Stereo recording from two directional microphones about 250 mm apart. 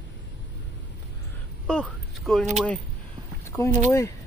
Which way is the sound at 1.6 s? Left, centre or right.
Centre.